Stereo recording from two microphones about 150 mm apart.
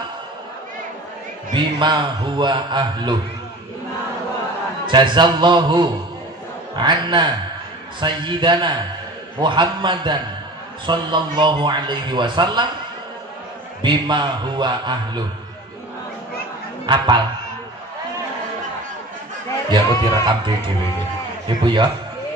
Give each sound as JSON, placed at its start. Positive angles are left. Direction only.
{"t": 1.5, "sound": "speech", "side_deg": -30}
{"t": 4.8, "sound": "speech", "side_deg": -30}
{"t": 13.8, "sound": "speech", "side_deg": -30}
{"t": 16.8, "sound": "speech", "side_deg": -30}
{"t": 19.7, "sound": "a man's voice", "side_deg": -30}